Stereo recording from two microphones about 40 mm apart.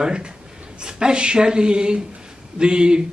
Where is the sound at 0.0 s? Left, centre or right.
Right.